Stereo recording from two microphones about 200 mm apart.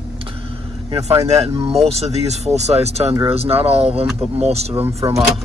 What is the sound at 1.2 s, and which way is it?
Speech, 30° right (ahead or behind).